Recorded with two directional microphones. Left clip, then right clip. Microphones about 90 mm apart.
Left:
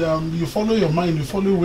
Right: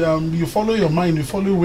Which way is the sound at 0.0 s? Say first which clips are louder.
Right 2 dB; 25° right (ahead or behind).